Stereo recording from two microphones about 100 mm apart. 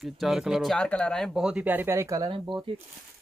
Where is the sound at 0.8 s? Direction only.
10° left (ahead or behind).